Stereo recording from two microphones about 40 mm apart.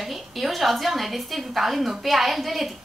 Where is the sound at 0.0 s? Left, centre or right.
Centre.